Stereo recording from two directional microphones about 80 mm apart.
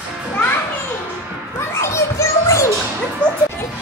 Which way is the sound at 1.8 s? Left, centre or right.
Left.